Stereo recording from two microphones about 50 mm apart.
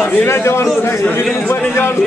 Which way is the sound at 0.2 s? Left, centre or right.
Left.